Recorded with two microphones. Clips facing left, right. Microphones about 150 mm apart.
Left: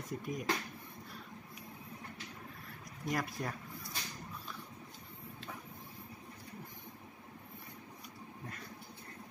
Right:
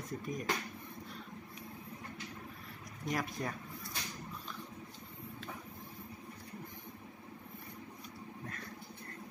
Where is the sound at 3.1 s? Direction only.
Centre (ahead or behind).